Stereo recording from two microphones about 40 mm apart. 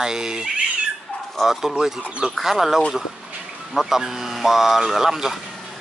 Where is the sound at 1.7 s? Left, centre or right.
Centre.